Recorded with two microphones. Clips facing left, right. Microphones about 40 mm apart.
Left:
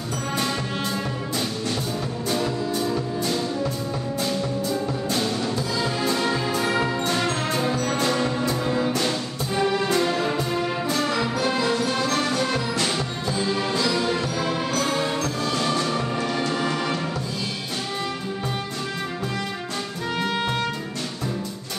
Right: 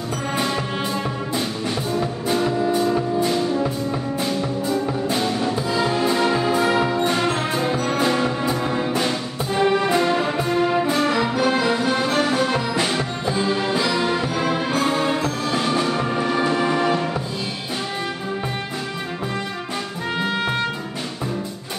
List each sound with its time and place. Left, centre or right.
2.0 s music: right